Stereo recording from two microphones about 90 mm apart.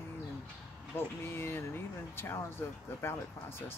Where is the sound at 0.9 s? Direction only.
25° left (ahead or behind).